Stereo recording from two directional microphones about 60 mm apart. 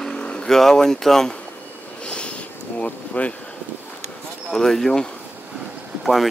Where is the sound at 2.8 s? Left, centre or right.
Left.